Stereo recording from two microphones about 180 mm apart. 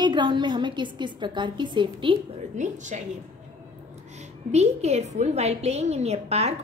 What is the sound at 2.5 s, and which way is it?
Speech, 45° right (ahead or behind).